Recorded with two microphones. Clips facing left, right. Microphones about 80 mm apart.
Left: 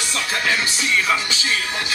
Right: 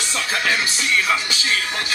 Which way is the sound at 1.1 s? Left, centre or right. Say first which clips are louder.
Even; left.